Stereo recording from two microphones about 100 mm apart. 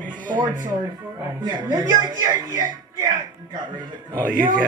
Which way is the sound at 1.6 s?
45° right (ahead or behind).